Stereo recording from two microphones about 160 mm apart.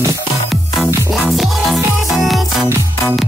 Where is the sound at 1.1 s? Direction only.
Centre (ahead or behind).